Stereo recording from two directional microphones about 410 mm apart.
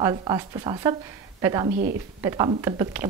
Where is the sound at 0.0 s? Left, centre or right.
Centre.